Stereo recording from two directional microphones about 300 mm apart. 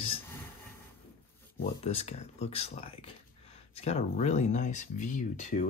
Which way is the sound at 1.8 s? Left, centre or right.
Left.